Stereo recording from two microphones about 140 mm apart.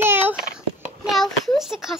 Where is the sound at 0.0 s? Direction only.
15° right (ahead or behind).